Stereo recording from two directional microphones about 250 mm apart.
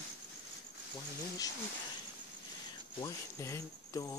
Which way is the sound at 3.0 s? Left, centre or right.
Centre.